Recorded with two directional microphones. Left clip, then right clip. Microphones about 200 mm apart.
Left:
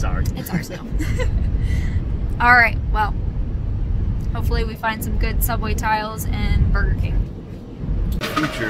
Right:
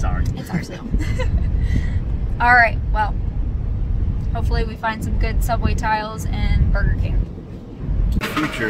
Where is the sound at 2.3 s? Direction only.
Centre (ahead or behind).